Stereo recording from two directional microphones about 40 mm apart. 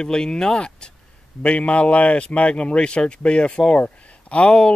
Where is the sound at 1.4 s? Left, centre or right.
Left.